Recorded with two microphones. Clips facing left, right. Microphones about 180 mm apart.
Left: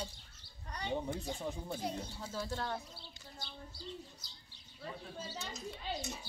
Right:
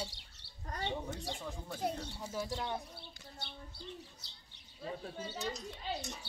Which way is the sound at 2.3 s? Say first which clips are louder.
Right 1 dB; 15° right (ahead or behind).